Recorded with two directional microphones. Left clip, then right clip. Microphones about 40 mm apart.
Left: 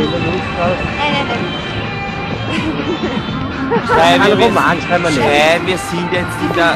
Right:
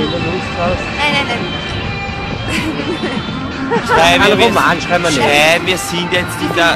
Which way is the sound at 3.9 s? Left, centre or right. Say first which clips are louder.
Right 1 dB; right.